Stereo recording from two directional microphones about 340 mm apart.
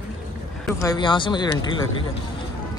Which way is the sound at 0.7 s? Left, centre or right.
Centre.